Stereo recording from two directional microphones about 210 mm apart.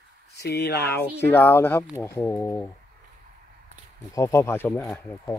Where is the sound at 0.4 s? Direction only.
50° left (ahead or behind).